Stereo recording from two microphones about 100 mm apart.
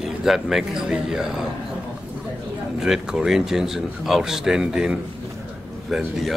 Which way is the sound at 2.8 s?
5° right (ahead or behind).